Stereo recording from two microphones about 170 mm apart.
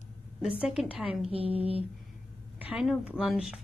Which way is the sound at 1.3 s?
35° right (ahead or behind).